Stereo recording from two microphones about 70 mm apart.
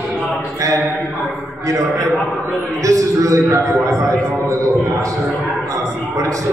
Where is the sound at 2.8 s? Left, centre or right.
Right.